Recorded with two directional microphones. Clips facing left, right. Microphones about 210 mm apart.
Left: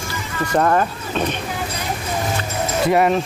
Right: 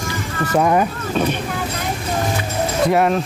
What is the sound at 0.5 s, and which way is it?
Speech, 10° right (ahead or behind).